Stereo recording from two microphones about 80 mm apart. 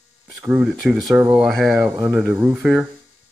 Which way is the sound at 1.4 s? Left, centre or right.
Centre.